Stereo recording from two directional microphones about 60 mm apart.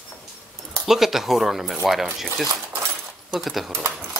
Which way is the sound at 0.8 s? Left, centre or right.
Centre.